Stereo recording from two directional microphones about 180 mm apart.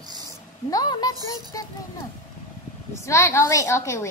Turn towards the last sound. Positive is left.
turn(degrees=15)  # may be behind; listen again after turning